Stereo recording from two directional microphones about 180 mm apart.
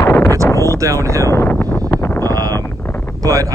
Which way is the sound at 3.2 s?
20° right (ahead or behind).